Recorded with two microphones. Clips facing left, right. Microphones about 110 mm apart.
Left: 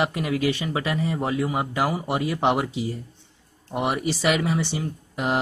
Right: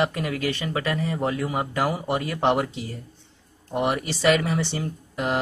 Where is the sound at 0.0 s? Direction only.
15° left (ahead or behind).